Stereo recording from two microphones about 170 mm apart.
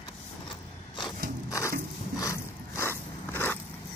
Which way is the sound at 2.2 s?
15° left (ahead or behind).